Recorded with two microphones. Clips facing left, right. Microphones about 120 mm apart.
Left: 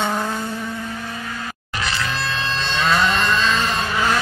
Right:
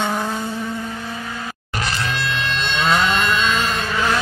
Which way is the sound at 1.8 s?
40° right (ahead or behind).